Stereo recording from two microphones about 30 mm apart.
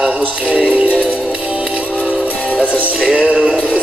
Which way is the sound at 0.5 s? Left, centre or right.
Right.